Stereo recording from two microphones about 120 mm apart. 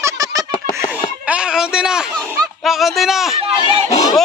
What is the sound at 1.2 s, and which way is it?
Speech, 10° right (ahead or behind).